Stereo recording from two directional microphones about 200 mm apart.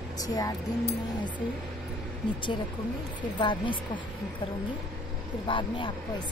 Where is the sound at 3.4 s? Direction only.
25° left (ahead or behind).